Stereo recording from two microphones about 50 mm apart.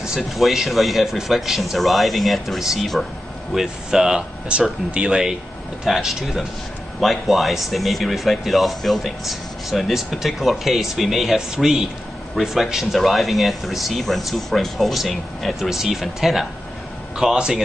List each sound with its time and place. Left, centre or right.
0.3 s speech: centre
4.5 s speech: right
5.9 s speech: centre